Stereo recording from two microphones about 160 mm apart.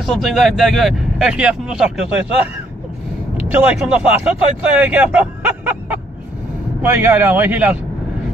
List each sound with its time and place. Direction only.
0.0 s speech: centre (ahead or behind)